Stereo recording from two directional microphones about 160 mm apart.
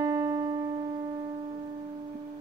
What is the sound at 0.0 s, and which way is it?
Music, 20° right (ahead or behind).